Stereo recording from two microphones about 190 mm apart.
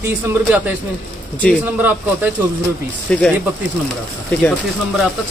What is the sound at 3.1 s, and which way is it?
Speech, 5° left (ahead or behind).